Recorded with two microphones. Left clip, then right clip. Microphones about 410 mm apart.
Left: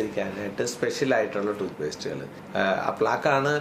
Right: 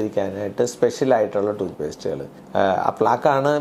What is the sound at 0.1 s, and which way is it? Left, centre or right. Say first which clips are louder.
Speech: right 6 dB; right.